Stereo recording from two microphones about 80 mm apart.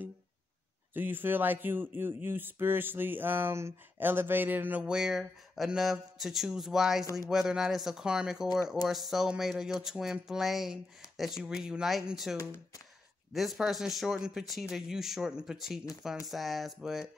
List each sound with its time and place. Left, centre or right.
0.9 s speech: right
4.8 s speech: centre